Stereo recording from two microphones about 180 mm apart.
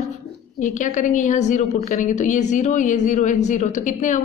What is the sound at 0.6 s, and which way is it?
A woman's voice, 45° left (ahead or behind).